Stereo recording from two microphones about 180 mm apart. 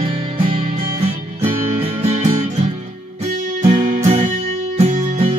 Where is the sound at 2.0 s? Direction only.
35° right (ahead or behind).